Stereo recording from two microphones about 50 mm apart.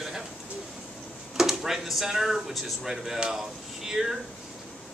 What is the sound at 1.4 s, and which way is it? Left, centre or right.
Speech, centre.